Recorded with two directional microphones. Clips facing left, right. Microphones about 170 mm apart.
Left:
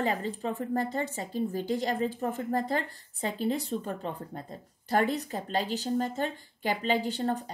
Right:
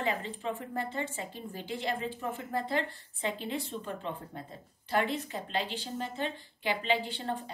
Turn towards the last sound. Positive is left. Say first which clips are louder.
# left 6 dB
turn(degrees=45)  # may be behind; listen again after turning